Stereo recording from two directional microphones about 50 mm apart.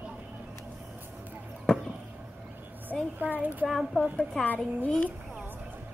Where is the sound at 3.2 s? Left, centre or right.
Right.